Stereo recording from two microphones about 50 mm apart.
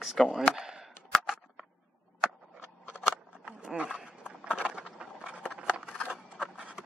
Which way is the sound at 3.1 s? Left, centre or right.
Centre.